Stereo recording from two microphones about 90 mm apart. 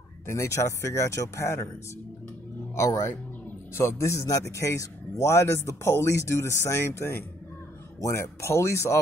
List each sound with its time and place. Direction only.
0.3 s speech: 35° left (ahead or behind)
2.7 s speech: 30° left (ahead or behind)